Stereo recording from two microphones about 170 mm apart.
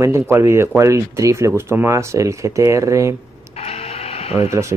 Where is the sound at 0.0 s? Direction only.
15° right (ahead or behind).